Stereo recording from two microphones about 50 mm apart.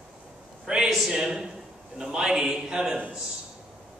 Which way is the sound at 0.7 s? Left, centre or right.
Centre.